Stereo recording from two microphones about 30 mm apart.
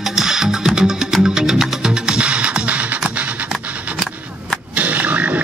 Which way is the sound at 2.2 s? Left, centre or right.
Right.